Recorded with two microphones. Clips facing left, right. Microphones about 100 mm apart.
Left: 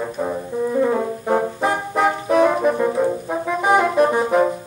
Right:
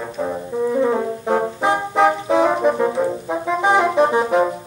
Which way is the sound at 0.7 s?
Centre (ahead or behind).